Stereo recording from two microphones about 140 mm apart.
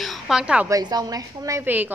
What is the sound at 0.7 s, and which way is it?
A woman's voice, 30° right (ahead or behind).